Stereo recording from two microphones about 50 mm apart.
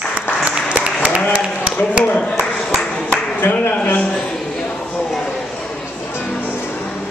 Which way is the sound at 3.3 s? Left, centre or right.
Left.